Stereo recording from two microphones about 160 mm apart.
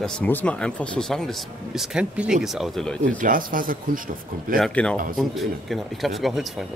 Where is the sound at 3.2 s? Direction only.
60° right (ahead or behind).